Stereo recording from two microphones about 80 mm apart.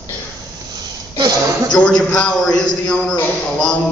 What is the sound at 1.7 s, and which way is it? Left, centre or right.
A man's voice, centre.